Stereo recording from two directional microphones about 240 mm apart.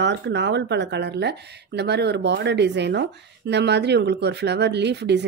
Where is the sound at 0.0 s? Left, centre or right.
Right.